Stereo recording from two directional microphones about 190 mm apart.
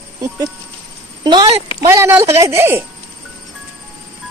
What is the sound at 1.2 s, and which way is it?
A woman's voice, 25° right (ahead or behind).